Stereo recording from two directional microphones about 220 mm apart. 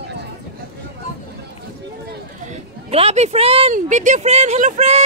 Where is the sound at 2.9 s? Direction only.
30° right (ahead or behind).